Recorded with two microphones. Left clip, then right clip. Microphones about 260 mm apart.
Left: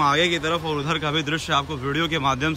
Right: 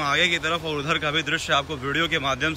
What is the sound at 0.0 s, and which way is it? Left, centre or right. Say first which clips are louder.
A man's voice: left 2 dB; centre.